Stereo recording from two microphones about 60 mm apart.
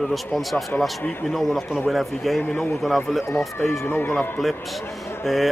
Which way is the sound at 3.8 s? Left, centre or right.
Left.